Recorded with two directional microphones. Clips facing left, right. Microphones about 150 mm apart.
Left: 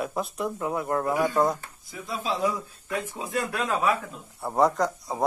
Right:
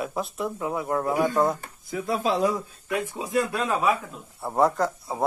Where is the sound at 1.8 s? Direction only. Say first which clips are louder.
Right 7 dB; 60° right (ahead or behind).